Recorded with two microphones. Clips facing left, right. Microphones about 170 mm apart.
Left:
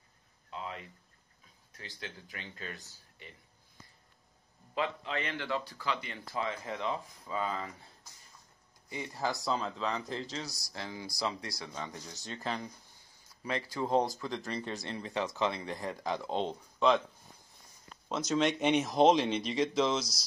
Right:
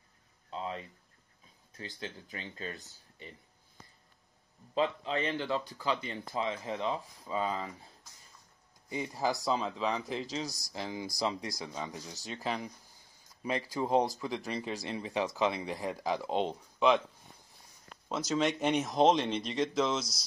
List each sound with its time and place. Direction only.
0.5 s a sound: 30° right (ahead or behind)
1.8 s speech: 30° right (ahead or behind)
4.7 s speech: 30° right (ahead or behind)
8.8 s speech: 20° right (ahead or behind)
10.3 s speech: 20° right (ahead or behind)
12.4 s speech: 5° right (ahead or behind)
13.4 s speech: 15° right (ahead or behind)
18.0 s speech: centre (ahead or behind)